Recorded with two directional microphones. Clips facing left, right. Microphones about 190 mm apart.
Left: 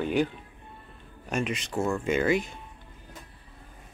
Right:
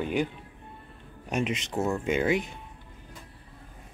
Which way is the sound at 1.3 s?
20° right (ahead or behind).